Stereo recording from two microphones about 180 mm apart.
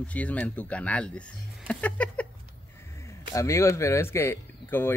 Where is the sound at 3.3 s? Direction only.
15° left (ahead or behind).